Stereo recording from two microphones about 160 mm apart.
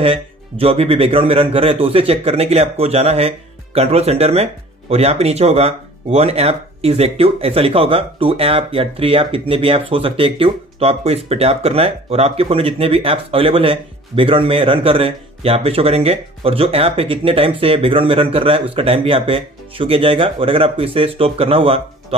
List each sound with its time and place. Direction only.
0.0 s a man's voice: 35° right (ahead or behind)